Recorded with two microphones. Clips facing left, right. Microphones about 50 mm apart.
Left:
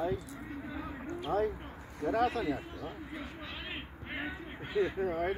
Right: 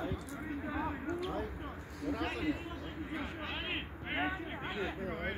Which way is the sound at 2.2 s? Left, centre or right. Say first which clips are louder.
Left 4 dB; right.